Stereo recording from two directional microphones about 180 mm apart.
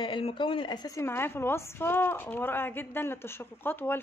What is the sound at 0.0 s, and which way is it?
A woman's voice, 25° left (ahead or behind).